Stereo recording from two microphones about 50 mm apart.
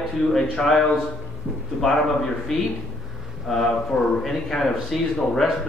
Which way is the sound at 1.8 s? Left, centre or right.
Centre.